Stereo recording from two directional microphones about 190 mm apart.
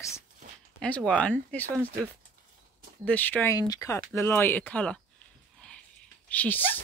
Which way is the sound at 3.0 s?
10° left (ahead or behind).